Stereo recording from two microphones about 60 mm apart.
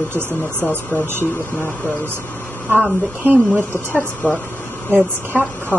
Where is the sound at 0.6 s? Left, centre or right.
Left.